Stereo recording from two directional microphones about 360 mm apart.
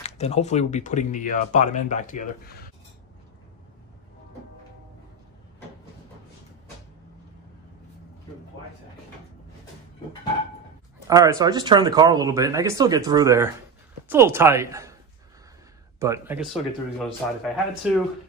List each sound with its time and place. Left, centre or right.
0.0 s speech: centre
11.1 s a woman's voice: centre
16.0 s speech: centre